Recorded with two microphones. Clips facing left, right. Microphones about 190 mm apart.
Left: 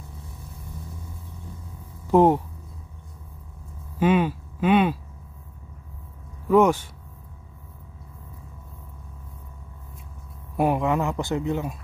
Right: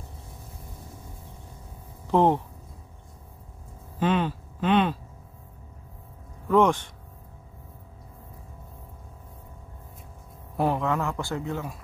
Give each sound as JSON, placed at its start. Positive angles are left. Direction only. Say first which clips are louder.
{"t": 2.0, "sound": "speech", "louder": "left 4 dB", "side_deg": 10}
{"t": 4.0, "sound": "speech", "louder": "left 4 dB", "side_deg": 10}
{"t": 6.5, "sound": "speech", "louder": "left 3 dB", "side_deg": 10}
{"t": 10.6, "sound": "speech", "louder": "left 3 dB", "side_deg": 15}